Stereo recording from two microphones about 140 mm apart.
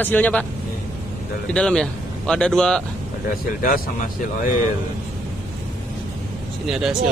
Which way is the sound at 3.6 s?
90° left.